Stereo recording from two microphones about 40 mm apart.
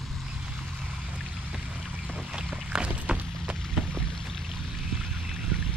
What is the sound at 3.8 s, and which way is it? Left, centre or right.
Boat, centre.